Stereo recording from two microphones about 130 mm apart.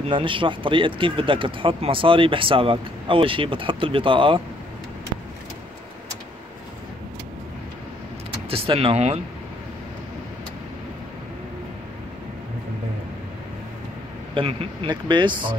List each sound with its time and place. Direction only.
0.0 s speech: 40° right (ahead or behind)
8.5 s speech: 45° right (ahead or behind)
14.3 s speech: 40° right (ahead or behind)